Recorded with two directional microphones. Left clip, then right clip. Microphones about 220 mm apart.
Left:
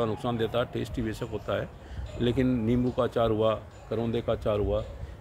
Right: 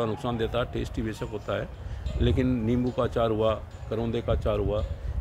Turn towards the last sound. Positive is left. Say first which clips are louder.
# even
turn(degrees=5)  # may be behind; listen again after turning